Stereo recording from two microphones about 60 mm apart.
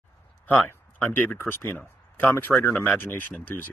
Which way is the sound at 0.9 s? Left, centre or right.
Left.